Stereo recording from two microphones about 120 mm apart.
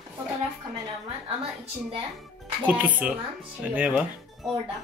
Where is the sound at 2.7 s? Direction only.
15° right (ahead or behind).